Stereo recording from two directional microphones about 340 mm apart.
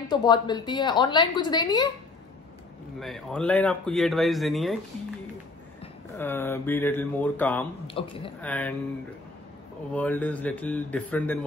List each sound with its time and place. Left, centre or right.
0.1 s speech: centre
3.0 s speech: centre
6.1 s speech: centre
9.9 s speech: centre